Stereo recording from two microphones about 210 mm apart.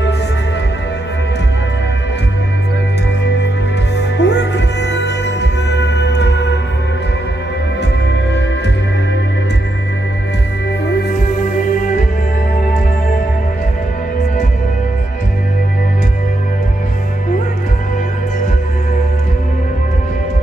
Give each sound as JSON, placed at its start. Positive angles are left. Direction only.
{"t": 4.2, "sound": "music", "side_deg": 55}